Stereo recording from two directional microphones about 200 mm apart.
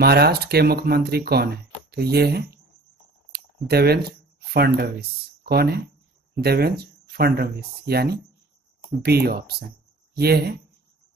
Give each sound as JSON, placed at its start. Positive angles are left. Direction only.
{"t": 0.0, "sound": "speech", "side_deg": -55}
{"t": 3.3, "sound": "a sound", "side_deg": -50}
{"t": 5.4, "sound": "speech", "side_deg": -50}